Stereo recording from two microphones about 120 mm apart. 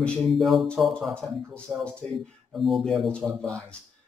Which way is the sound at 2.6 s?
Centre (ahead or behind).